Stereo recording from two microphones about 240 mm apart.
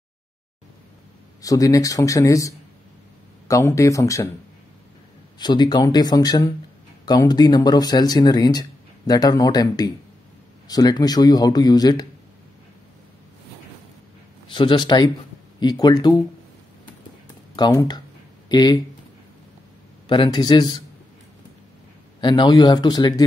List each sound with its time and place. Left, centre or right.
1.4 s speech: centre
5.4 s speech: centre
14.5 s speech: centre
17.6 s speech: centre
20.1 s speech: centre
22.2 s speech: centre